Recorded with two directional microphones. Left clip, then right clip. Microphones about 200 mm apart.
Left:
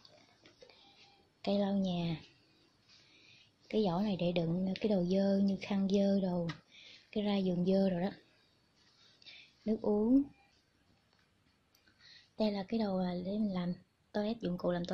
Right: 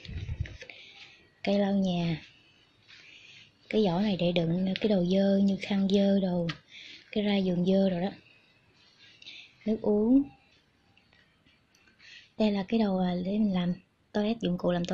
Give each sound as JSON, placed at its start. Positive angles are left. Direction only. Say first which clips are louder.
{"t": 1.4, "sound": "a woman's voice", "louder": "right 6 dB", "side_deg": -10}
{"t": 3.6, "sound": "a woman's voice", "louder": "right 6 dB", "side_deg": -5}
{"t": 9.2, "sound": "a sound", "louder": "right 6 dB", "side_deg": 0}
{"t": 12.4, "sound": "a woman's voice", "louder": "right 7 dB", "side_deg": -10}